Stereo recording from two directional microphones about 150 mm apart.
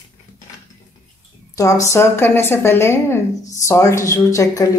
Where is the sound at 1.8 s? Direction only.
20° left (ahead or behind).